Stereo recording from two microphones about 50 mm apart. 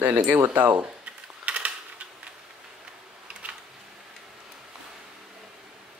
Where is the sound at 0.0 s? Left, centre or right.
Right.